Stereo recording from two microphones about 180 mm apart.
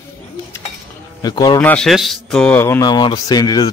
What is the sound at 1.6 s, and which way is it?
Speech, 5° left (ahead or behind).